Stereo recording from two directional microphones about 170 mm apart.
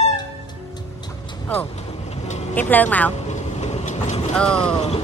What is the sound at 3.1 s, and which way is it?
Vehicle, 40° left (ahead or behind).